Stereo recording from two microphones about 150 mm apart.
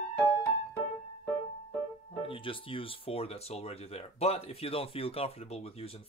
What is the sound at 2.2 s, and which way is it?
Speech, 35° left (ahead or behind).